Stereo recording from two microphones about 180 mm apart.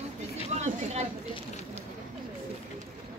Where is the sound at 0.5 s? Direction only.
40° right (ahead or behind).